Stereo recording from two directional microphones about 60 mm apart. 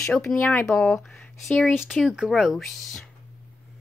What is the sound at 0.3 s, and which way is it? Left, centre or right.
Speech, left.